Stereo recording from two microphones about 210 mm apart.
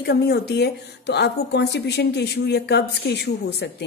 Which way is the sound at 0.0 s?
50° left (ahead or behind).